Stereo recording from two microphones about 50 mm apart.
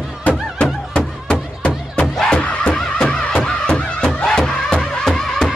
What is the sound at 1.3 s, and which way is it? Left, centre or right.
Music, left.